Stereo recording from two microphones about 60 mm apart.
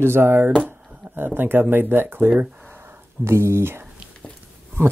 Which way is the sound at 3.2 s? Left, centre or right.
Right.